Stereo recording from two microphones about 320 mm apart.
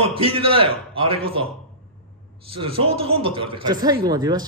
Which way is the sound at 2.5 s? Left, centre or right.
Centre.